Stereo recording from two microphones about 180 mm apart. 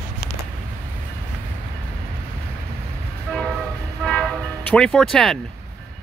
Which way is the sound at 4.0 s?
5° left (ahead or behind).